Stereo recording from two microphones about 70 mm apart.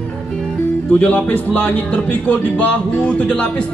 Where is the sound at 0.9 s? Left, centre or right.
Centre.